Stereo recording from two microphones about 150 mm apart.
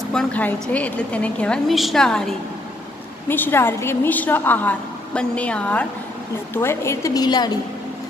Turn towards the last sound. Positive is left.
turn(degrees=25)  # may be behind; listen again after turning